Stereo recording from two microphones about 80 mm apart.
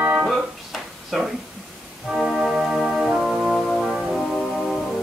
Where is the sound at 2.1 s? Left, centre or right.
Centre.